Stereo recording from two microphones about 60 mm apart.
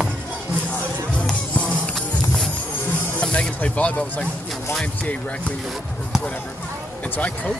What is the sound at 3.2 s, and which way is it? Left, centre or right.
Speech, left.